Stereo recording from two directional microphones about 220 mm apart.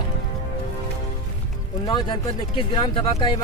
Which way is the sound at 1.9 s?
20° left (ahead or behind).